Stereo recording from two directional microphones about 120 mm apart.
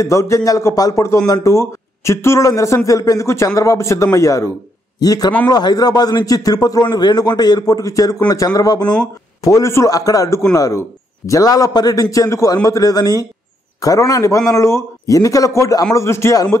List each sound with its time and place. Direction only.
0.0 s a man's voice: 25° left (ahead or behind)